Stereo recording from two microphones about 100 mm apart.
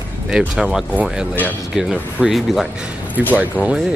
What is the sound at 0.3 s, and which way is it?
Speech, 10° right (ahead or behind).